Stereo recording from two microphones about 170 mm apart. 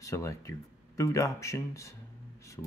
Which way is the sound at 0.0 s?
15° left (ahead or behind).